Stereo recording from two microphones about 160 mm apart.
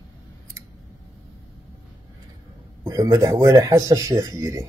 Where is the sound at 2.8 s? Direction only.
20° right (ahead or behind).